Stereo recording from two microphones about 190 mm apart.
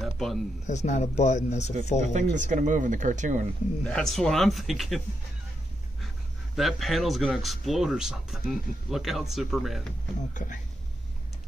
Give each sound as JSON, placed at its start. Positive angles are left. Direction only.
{"t": 0.0, "sound": "a sound", "side_deg": 0}
{"t": 0.7, "sound": "speech", "side_deg": 40}
{"t": 2.0, "sound": "speech", "side_deg": -40}
{"t": 3.8, "sound": "speech", "side_deg": 0}
{"t": 6.5, "sound": "speech", "side_deg": 0}
{"t": 10.3, "sound": "speech", "side_deg": 45}